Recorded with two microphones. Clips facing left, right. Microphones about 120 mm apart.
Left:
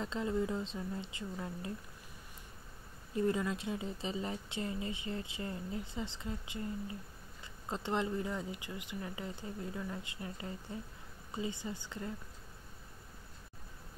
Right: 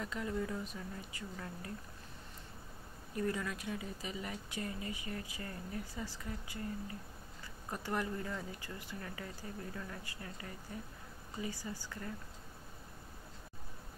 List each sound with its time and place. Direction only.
0.0 s speech: 25° left (ahead or behind)
3.2 s speech: 25° left (ahead or behind)